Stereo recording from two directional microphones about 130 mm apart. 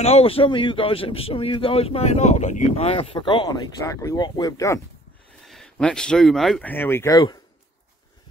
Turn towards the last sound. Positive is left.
turn(degrees=30)  # may be behind; listen again after turning